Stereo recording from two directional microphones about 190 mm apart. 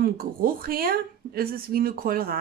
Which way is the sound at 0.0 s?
50° right (ahead or behind).